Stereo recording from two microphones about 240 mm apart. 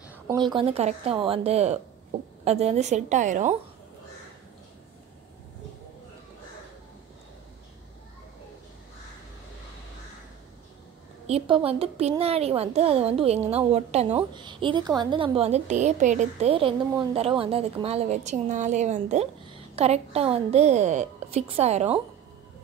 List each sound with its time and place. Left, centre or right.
0.3 s a woman's voice: centre
11.2 s a woman's voice: right